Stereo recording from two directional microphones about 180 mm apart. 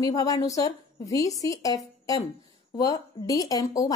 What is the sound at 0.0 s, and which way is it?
Speech, 20° left (ahead or behind).